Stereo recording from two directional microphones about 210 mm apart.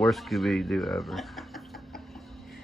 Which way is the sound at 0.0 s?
Centre (ahead or behind).